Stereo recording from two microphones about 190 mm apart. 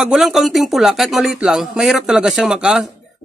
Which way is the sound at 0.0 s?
5° right (ahead or behind).